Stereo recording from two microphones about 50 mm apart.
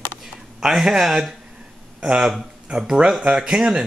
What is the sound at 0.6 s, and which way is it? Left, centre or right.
Speech, centre.